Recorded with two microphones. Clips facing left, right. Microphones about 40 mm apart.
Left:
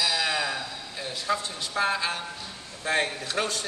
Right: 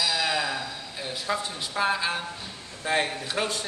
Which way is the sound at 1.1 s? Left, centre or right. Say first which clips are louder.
Left 1 dB; centre.